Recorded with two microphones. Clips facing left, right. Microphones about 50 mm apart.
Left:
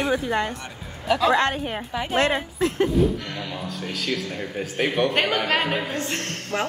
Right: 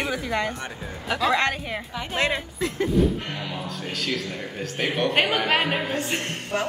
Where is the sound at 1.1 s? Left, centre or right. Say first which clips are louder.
Left 4 dB; centre.